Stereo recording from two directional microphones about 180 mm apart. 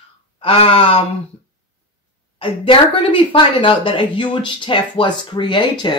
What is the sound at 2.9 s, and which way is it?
Speech, 30° left (ahead or behind).